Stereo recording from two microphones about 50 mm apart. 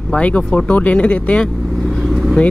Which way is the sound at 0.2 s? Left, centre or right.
Left.